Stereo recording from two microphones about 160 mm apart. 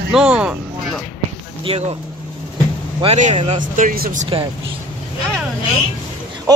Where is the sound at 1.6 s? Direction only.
35° right (ahead or behind).